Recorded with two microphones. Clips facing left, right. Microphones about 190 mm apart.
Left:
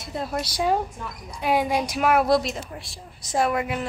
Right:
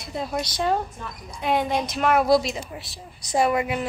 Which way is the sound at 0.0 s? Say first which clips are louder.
Even; centre (ahead or behind).